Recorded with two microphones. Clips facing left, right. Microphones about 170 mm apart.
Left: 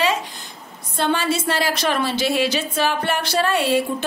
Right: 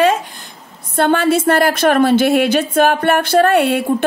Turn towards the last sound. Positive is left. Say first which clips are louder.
# right 7 dB
turn(degrees=-55)  # may be behind; listen again after turning